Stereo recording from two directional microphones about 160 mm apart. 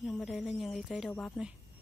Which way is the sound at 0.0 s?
Centre (ahead or behind).